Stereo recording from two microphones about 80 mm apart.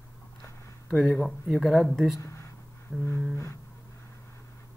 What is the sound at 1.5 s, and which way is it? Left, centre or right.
Speech, centre.